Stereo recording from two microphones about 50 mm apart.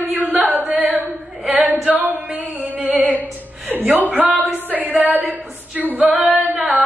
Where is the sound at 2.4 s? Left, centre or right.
Right.